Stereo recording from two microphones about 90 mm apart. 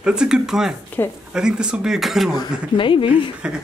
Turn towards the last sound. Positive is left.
turn(degrees=70)  # may be behind; listen again after turning